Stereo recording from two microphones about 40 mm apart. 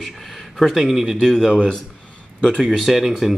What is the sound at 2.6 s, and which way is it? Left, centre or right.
Speech, centre.